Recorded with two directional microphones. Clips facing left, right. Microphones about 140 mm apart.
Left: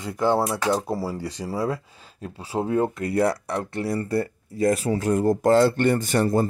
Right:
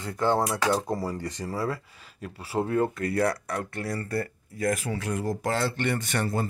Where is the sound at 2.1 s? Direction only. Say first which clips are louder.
Left 1 dB; 25° left (ahead or behind).